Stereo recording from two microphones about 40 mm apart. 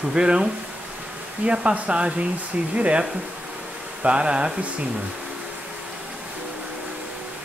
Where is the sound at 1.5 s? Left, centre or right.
Right.